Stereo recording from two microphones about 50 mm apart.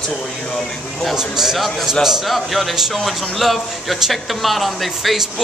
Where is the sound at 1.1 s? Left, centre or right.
Centre.